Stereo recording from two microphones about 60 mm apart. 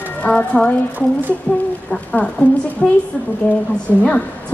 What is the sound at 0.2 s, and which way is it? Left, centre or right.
Speech, left.